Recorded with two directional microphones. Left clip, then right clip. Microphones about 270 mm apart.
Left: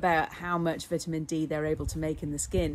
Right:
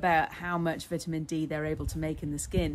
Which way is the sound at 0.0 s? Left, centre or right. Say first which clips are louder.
Even; centre.